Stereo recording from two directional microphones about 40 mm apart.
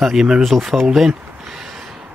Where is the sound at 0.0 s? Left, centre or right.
Centre.